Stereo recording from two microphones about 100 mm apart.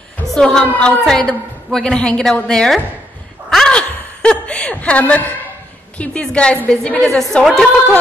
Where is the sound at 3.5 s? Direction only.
10° left (ahead or behind).